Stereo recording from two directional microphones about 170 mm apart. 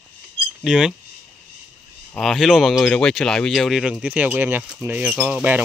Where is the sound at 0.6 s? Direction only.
5° right (ahead or behind).